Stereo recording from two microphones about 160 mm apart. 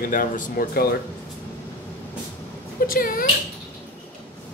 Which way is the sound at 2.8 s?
60° left (ahead or behind).